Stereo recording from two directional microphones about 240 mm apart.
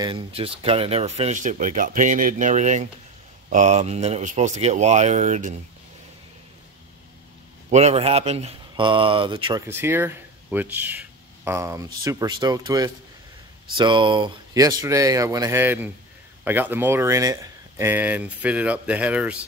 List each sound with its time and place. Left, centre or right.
0.0 s speech: right
7.7 s speech: right; by 19.3 s centre